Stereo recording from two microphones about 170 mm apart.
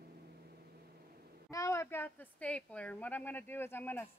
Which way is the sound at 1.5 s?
20° left (ahead or behind).